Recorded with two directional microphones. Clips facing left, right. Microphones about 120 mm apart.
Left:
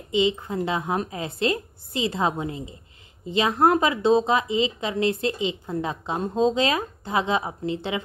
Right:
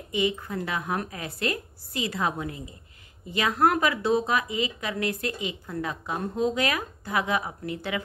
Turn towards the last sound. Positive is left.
turn(degrees=25)  # may be behind; listen again after turning